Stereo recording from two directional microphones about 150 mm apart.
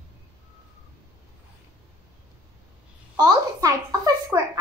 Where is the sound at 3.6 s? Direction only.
25° right (ahead or behind).